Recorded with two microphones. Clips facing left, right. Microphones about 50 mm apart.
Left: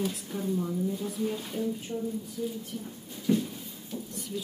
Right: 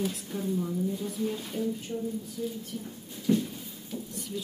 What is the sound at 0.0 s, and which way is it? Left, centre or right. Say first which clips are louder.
Speech: even; centre.